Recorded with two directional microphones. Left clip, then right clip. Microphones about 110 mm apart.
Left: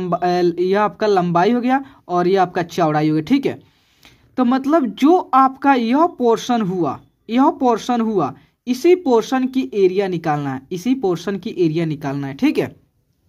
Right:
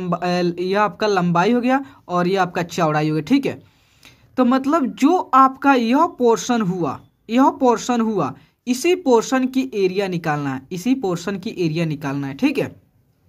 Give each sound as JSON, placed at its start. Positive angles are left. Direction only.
{"t": 0.0, "sound": "a woman's voice", "side_deg": 20}